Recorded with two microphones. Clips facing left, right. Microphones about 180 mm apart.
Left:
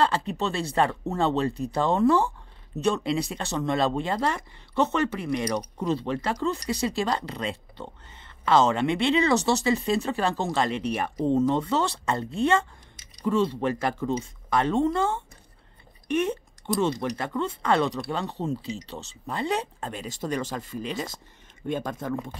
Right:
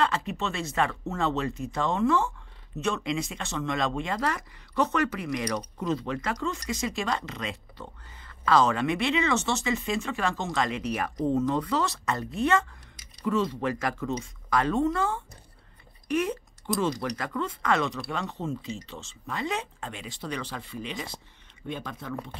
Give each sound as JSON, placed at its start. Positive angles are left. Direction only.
{"t": 0.0, "sound": "a man's voice", "side_deg": 35}